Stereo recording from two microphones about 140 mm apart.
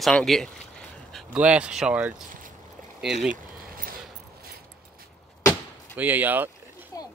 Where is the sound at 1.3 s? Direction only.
10° right (ahead or behind).